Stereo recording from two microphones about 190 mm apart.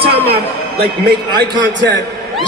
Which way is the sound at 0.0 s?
55° right (ahead or behind).